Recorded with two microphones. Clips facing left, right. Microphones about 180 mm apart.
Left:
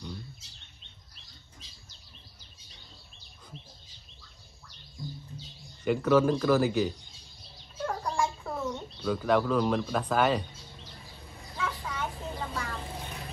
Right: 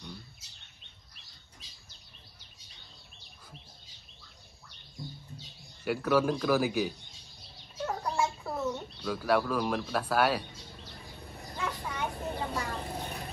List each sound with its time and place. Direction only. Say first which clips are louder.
5.9 s speech: left 4 dB; 5° right (ahead or behind)
7.8 s bird: left 1 dB; 5° right (ahead or behind)
11.5 s vehicle: left 1 dB; 15° right (ahead or behind)
12.9 s vehicle: right 2 dB; 35° right (ahead or behind)